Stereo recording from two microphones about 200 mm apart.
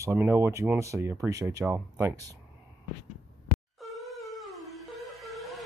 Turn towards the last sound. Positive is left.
turn(degrees=0)  # may be behind; listen again after turning